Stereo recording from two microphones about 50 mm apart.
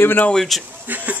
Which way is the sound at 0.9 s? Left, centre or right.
Right.